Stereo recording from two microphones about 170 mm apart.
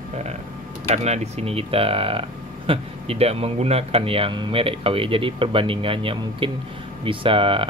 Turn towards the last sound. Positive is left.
turn(degrees=-30)  # may be behind; listen again after turning